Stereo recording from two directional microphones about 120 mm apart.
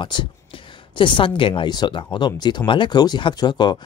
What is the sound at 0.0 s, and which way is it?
Speech, 40° left (ahead or behind).